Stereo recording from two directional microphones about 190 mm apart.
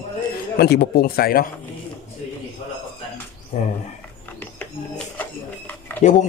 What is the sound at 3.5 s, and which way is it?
Speech, 40° left (ahead or behind).